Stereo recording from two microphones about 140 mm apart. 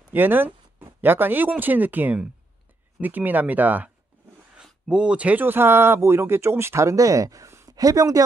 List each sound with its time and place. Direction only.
0.1 s speech: 15° right (ahead or behind)